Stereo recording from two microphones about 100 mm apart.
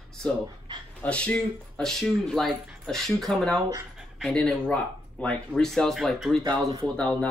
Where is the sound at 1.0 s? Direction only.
10° left (ahead or behind).